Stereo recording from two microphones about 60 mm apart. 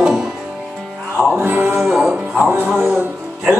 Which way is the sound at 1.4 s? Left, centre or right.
Right.